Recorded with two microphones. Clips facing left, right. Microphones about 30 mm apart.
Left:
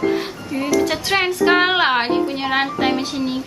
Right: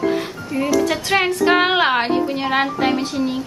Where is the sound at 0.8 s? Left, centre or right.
Centre.